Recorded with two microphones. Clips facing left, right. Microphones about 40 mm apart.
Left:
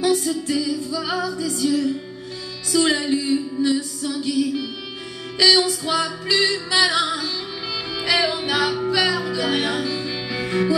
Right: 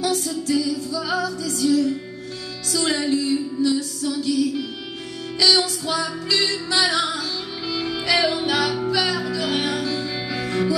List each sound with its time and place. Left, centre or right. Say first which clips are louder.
0.0 s music: left 3 dB; left
8.0 s music: even; centre
9.4 s music: left 2 dB; left
9.8 s music: even; centre